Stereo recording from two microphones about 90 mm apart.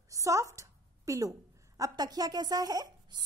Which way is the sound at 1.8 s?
45° right (ahead or behind).